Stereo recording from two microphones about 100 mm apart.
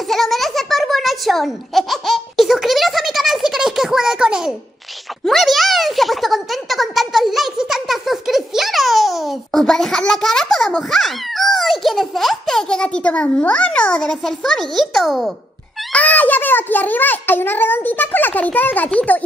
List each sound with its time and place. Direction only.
0.1 s a sound: centre (ahead or behind)
5.2 s a child's voice: centre (ahead or behind)
15.9 s a child's voice: 15° left (ahead or behind)